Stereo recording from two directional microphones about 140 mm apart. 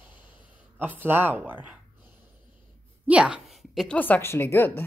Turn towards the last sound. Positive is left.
turn(degrees=15)  # may be behind; listen again after turning